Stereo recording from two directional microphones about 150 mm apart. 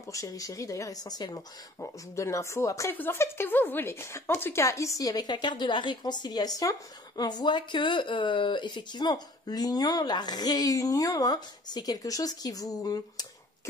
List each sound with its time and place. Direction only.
0.1 s speech: 20° left (ahead or behind)